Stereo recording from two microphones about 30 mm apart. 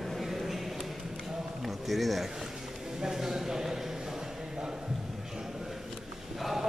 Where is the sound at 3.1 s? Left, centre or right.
Centre.